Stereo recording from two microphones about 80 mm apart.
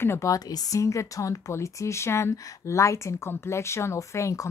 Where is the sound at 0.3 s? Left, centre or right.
Left.